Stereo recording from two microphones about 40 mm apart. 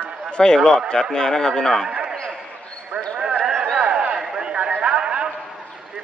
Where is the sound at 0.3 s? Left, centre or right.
Centre.